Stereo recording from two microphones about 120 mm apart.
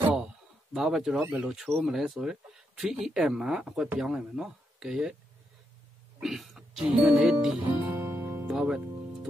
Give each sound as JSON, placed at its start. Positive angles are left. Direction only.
{"t": 0.7, "sound": "speech", "side_deg": -5}
{"t": 6.1, "sound": "speech", "side_deg": 0}
{"t": 7.8, "sound": "music", "side_deg": -20}
{"t": 8.5, "sound": "music", "side_deg": -5}